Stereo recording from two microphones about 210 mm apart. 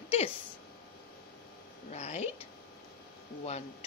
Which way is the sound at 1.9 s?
30° left (ahead or behind).